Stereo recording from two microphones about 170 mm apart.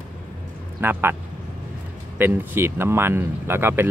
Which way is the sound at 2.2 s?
15° right (ahead or behind).